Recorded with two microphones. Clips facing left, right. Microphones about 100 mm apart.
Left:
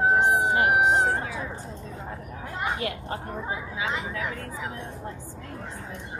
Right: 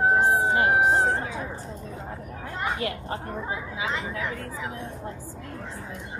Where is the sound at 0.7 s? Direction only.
20° left (ahead or behind).